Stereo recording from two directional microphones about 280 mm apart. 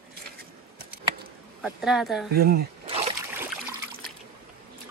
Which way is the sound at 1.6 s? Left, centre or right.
Centre.